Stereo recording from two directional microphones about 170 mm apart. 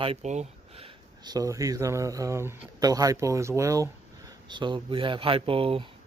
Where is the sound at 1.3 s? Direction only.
20° right (ahead or behind).